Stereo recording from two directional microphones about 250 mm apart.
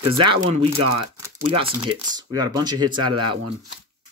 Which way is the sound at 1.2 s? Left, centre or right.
Right.